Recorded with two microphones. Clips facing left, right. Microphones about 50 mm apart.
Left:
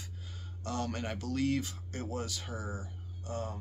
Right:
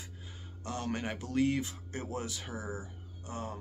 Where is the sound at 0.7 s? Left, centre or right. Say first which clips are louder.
Even; centre.